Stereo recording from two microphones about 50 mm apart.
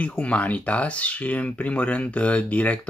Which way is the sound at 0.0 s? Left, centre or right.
Left.